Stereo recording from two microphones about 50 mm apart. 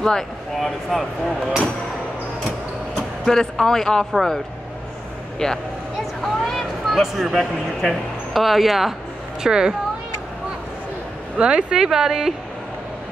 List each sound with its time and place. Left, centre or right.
0.0 s speech: centre
3.3 s speech: centre
5.4 s speech: centre
9.4 s speech: centre
11.3 s speech: centre